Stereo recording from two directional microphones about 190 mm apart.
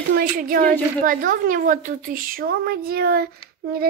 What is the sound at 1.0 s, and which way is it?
A woman's voice, 45° right (ahead or behind).